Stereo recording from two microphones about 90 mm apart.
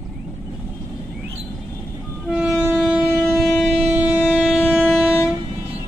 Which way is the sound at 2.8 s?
15° right (ahead or behind).